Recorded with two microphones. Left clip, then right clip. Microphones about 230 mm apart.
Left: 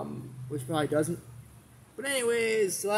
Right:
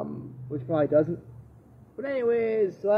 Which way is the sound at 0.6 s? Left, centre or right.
Centre.